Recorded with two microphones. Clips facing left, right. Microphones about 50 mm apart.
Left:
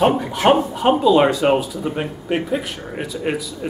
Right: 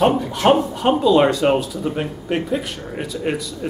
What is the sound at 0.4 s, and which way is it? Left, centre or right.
A man's voice, centre.